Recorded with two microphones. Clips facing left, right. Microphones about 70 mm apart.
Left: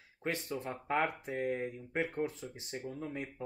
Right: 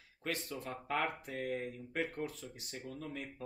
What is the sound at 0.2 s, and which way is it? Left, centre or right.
Speech, left.